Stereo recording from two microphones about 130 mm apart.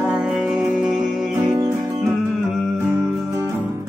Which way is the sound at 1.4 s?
25° right (ahead or behind).